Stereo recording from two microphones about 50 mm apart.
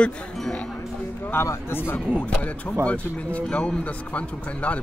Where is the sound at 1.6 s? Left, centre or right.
Left.